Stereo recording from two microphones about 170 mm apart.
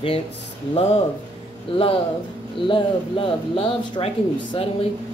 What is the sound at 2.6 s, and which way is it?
Speech, 30° left (ahead or behind).